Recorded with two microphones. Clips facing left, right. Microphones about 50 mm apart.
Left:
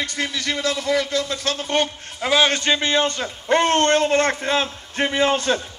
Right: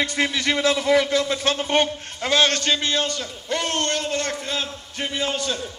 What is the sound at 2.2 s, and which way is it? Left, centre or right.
A man's voice, centre.